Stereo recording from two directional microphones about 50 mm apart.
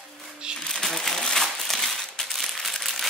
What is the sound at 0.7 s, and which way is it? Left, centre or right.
Crumpling, centre.